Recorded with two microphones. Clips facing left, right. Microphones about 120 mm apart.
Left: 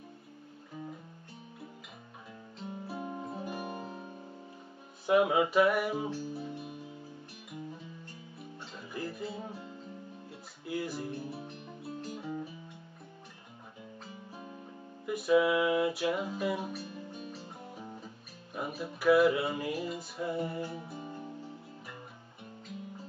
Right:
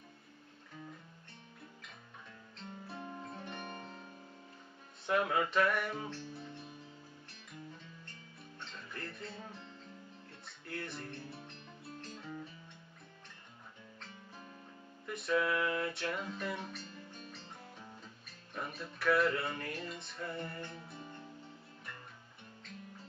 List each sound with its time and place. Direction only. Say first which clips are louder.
2.6 s music: left 7 dB; 10° left (ahead or behind)
3.4 s guitar: left 7 dB; 10° left (ahead or behind)
5.0 s music: left 7 dB; 15° left (ahead or behind)
15.0 s music: left 7 dB; 5° left (ahead or behind)
20.8 s guitar: left 7 dB; 20° left (ahead or behind)